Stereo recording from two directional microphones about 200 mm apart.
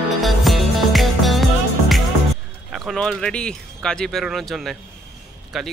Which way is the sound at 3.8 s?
5° left (ahead or behind).